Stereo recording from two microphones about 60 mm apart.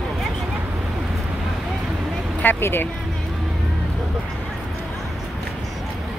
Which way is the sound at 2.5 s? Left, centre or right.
Left.